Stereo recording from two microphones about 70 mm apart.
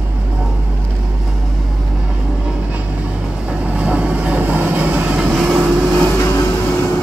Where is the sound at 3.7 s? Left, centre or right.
Centre.